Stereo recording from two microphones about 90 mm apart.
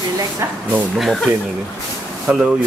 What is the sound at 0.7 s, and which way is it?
Speech, centre (ahead or behind).